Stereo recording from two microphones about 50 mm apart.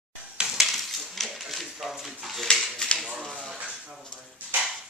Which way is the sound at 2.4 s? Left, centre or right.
Centre.